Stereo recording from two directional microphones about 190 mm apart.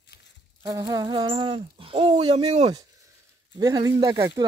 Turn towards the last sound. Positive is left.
turn(degrees=-20)  # may be behind; listen again after turning